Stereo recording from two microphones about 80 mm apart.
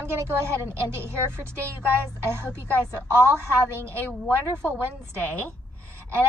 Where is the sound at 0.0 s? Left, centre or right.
Right.